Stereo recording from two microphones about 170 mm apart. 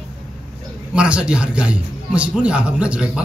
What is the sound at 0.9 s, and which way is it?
A man's voice, 5° right (ahead or behind).